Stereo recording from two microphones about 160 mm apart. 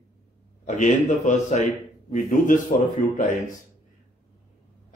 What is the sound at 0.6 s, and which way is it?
A man's voice, 50° left (ahead or behind).